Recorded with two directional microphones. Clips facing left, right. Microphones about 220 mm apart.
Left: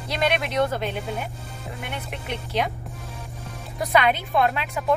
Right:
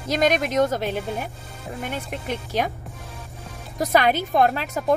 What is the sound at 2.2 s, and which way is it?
Speech, 45° right (ahead or behind).